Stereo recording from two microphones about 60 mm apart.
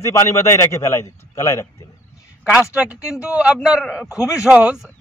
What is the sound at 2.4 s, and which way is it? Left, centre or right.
A man's voice, centre.